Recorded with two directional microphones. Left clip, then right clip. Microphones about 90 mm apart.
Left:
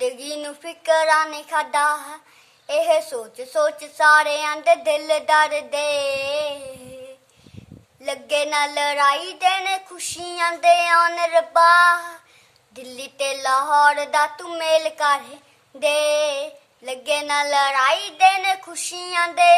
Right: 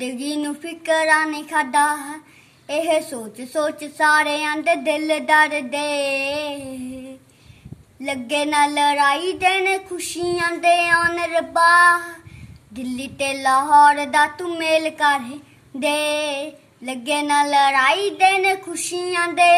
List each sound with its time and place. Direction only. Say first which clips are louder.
0.0 s a woman's voice: even; 35° left (ahead or behind)
8.0 s a woman's voice: even; 35° left (ahead or behind)